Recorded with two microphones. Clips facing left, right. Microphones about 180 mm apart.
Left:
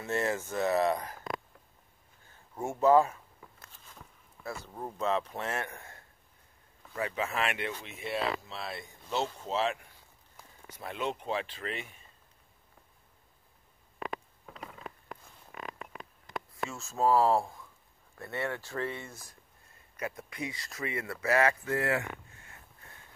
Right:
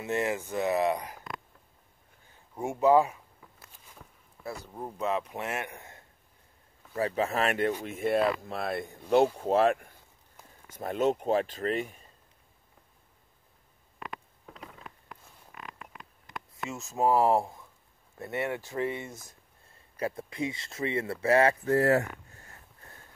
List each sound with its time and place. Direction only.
0.0 s speech: 15° right (ahead or behind)
2.5 s a sound: 15° right (ahead or behind)
4.7 s speech: 10° right (ahead or behind)
7.0 s speech: 35° right (ahead or behind)
16.6 s speech: 20° right (ahead or behind); by 22.6 s 40° right (ahead or behind)